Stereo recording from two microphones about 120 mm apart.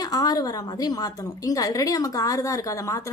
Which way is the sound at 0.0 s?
30° left (ahead or behind).